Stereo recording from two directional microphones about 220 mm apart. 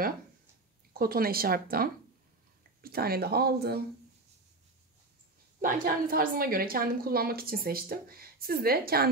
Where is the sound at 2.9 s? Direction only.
45° right (ahead or behind).